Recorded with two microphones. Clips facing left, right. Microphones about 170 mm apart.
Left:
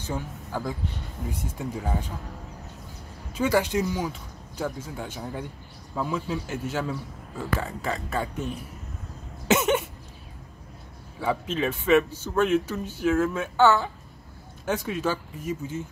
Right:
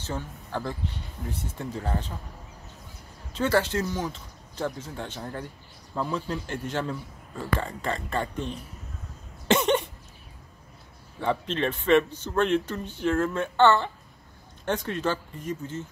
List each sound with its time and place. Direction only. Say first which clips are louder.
0.0 s a man's voice: left 2 dB; 10° left (ahead or behind)
3.3 s a man's voice: left 1 dB; 10° left (ahead or behind)
11.1 s a man's voice: even; 5° left (ahead or behind)